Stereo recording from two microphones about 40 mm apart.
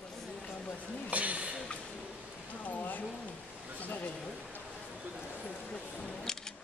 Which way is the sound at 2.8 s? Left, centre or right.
Left.